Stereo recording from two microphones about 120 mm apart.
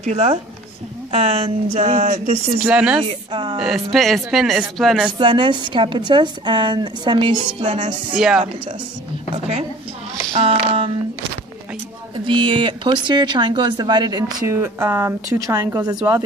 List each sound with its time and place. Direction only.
0.0 s speech: 70° right (ahead or behind)
1.1 s speech: 60° right (ahead or behind); by 2.4 s 75° right (ahead or behind)
2.6 s speech: 10° right (ahead or behind)
3.1 s a sound: 50° right (ahead or behind)
3.5 s speech: 5° right (ahead or behind)
5.2 s a woman's voice: 40° right (ahead or behind)
8.1 s speech: 5° right (ahead or behind)
9.3 s speech: 60° right (ahead or behind)
10.4 s a sound: 50° right (ahead or behind)
12.3 s a woman's voice: 45° right (ahead or behind)
14.5 s a woman's voice: 20° right (ahead or behind)